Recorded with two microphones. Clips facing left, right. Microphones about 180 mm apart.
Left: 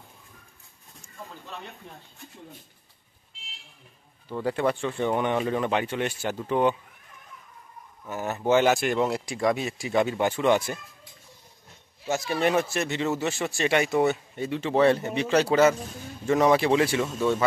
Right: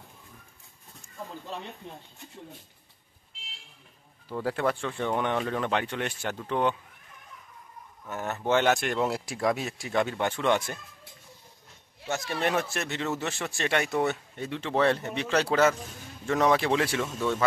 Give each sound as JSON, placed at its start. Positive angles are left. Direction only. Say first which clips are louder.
{"t": 1.8, "sound": "speech", "louder": "right 3 dB", "side_deg": -20}
{"t": 4.3, "sound": "speech", "louder": "left 2 dB", "side_deg": 0}
{"t": 8.0, "sound": "speech", "louder": "left 3 dB", "side_deg": 5}
{"t": 12.1, "sound": "speech", "louder": "left 4 dB", "side_deg": 5}